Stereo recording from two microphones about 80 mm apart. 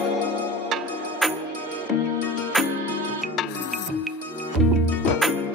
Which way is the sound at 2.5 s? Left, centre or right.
Centre.